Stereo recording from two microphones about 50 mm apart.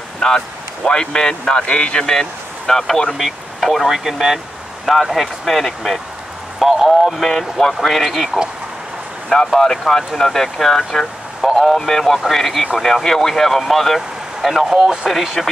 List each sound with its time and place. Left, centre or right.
0.2 s speech: centre
1.7 s speech: left
2.0 s speech: centre
3.2 s speech: centre
9.5 s speech: centre